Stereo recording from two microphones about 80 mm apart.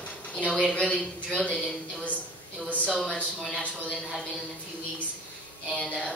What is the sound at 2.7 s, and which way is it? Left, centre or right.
Speech, centre.